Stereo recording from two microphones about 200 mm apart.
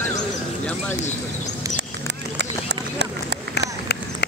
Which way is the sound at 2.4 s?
60° right (ahead or behind).